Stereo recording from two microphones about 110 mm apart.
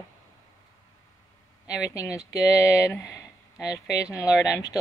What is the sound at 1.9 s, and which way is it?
Speech, 30° left (ahead or behind).